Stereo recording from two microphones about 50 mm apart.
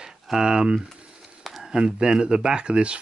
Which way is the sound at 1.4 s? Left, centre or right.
Centre.